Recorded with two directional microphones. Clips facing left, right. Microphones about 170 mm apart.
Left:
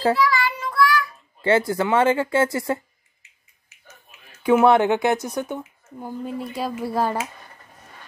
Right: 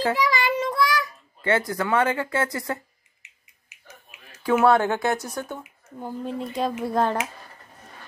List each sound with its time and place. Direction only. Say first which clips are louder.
0.2 s child singing: left 1 dB; 20° right (ahead or behind)
1.7 s speech: left 4 dB; 25° left (ahead or behind)
3.2 s finger snapping: right 4 dB; 15° right (ahead or behind)
4.4 s speech: left 3 dB; 20° left (ahead or behind)
5.9 s speech: left 1 dB; 5° left (ahead or behind)